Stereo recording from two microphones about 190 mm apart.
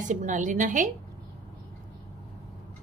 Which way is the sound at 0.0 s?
40° right (ahead or behind).